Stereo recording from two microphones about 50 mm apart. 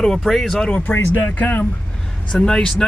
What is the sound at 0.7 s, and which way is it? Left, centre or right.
Speech, left.